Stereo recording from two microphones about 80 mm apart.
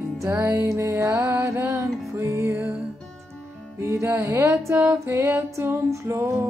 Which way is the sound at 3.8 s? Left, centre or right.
Right.